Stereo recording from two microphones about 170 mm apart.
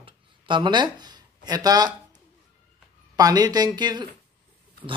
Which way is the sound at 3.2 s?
20° right (ahead or behind).